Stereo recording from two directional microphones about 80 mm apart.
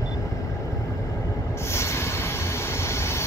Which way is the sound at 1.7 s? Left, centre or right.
Left.